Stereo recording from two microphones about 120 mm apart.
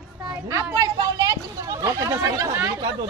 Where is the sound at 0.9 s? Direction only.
30° right (ahead or behind).